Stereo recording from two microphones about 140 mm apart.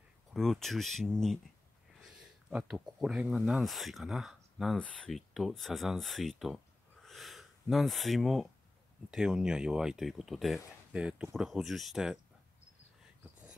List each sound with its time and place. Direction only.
0.3 s speech: centre (ahead or behind)